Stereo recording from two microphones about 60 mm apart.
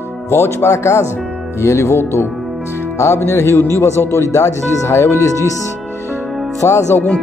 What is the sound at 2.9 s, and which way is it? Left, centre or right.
Music, left.